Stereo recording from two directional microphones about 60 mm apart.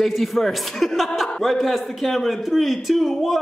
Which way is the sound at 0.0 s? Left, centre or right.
Centre.